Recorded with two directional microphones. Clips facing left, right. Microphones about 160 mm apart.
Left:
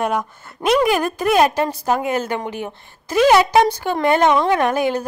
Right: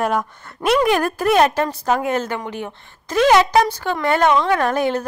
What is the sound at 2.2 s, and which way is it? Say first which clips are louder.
A woman's voice: left 2 dB; 15° left (ahead or behind).